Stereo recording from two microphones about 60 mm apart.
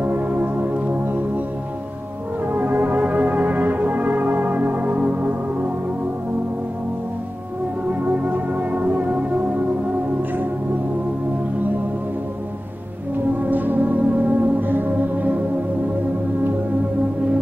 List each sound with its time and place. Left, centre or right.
0.0 s music: right
2.4 s music: right
7.9 s music: right
13.4 s music: right